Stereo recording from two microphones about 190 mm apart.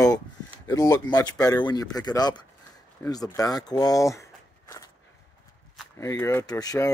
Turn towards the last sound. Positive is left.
turn(degrees=20)  # may be behind; listen again after turning